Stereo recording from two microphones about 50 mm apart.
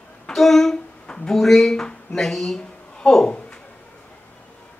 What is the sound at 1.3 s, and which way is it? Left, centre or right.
A woman's voice, centre.